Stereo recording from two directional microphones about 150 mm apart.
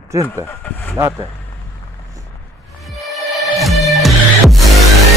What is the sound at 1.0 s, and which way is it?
Speech, 20° right (ahead or behind).